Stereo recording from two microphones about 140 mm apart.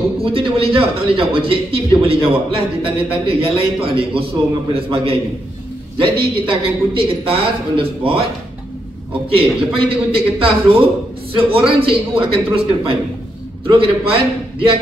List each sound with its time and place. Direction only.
0.2 s a man's voice: 40° right (ahead or behind)
6.4 s a man's voice: 40° right (ahead or behind)
9.3 s a man's voice: 40° right (ahead or behind)